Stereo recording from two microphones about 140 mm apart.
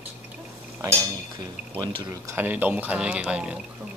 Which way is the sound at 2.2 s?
15° right (ahead or behind).